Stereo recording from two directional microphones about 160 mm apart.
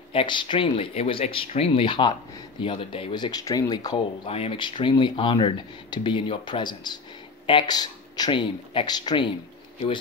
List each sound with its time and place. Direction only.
0.1 s speech: 35° left (ahead or behind)
4.3 s speech: 35° left (ahead or behind)